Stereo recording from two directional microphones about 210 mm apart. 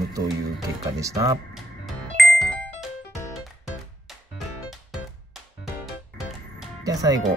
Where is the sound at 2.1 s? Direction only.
Centre (ahead or behind).